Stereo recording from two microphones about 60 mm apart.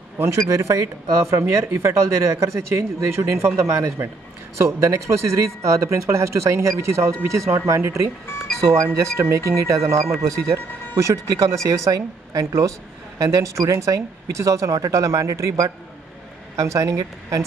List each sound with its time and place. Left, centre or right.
0.2 s speech: right
3.5 s speech: right
7.8 s speech: right